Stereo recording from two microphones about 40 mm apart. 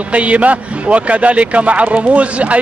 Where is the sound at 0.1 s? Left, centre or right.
Right.